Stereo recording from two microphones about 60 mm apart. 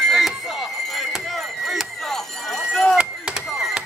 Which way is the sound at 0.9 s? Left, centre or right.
Centre.